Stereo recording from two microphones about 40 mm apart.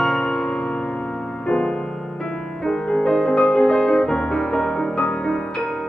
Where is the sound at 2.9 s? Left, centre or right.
Left.